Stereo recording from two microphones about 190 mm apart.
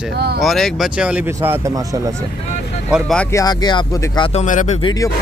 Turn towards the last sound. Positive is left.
turn(degrees=20)  # may be behind; listen again after turning